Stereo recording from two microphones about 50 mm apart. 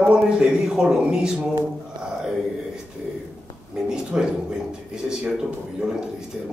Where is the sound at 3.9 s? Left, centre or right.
Centre.